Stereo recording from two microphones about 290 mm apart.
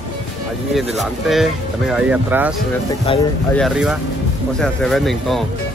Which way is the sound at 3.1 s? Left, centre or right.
Centre.